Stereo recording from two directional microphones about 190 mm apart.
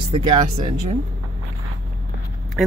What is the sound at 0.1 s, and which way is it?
Speech, 20° right (ahead or behind).